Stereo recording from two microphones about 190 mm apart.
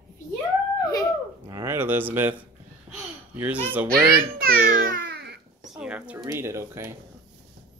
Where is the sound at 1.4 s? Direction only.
15° right (ahead or behind).